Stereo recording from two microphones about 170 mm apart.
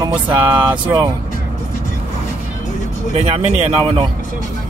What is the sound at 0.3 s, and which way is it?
Speech, 30° right (ahead or behind).